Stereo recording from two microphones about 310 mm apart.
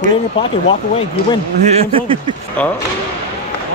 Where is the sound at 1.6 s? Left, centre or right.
Centre.